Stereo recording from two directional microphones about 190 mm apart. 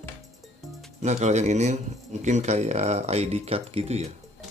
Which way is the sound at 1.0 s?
35° right (ahead or behind).